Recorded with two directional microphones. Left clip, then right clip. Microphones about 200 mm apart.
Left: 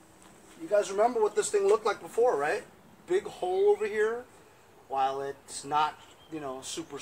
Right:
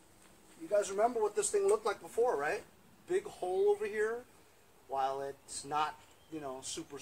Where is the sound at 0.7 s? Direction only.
5° right (ahead or behind).